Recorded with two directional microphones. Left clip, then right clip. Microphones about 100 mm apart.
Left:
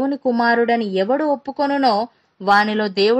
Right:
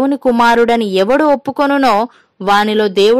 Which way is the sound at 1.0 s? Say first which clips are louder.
Right 8 dB; 40° right (ahead or behind).